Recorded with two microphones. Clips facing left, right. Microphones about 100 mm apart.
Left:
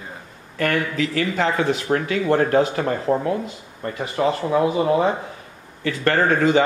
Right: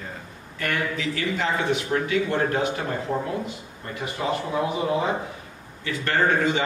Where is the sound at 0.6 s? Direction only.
60° left (ahead or behind).